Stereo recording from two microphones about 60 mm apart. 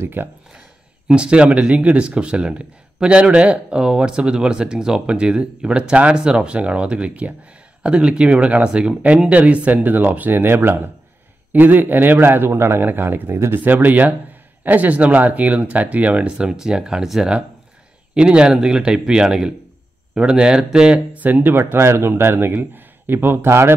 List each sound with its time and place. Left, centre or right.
0.0 s a man's voice: right
1.0 s a man's voice: centre; by 21.6 s right
21.7 s a man's voice: right